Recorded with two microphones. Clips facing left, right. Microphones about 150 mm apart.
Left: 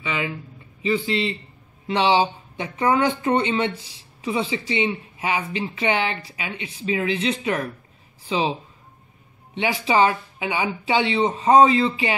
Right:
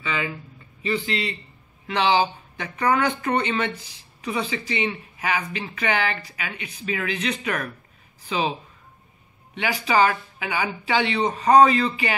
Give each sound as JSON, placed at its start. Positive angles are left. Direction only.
{"t": 0.0, "sound": "a man's voice", "side_deg": 15}
{"t": 9.6, "sound": "speech", "side_deg": 25}